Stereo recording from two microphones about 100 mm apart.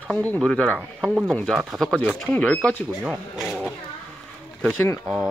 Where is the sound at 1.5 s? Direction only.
Centre (ahead or behind).